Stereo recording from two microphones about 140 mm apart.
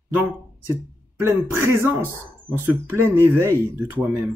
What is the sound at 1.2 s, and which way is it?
Speech, 15° right (ahead or behind).